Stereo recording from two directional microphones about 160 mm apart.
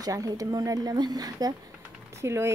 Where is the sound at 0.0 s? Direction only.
20° right (ahead or behind).